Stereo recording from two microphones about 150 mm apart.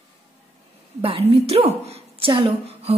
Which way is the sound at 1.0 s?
40° right (ahead or behind).